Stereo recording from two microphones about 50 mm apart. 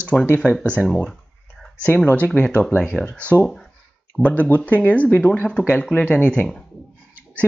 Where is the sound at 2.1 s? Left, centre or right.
Left.